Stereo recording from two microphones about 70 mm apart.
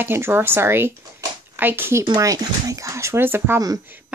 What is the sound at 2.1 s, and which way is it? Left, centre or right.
Speech, right.